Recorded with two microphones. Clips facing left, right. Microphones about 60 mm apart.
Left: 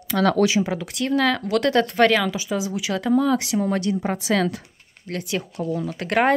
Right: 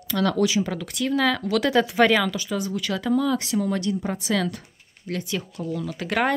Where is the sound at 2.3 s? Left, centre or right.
Centre.